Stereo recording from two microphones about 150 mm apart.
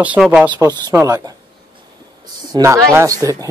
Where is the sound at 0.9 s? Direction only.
20° right (ahead or behind).